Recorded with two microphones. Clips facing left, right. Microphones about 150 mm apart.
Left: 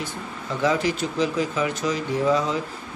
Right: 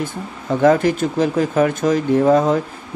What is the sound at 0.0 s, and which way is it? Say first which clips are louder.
Speech: right 6 dB; 50° right (ahead or behind).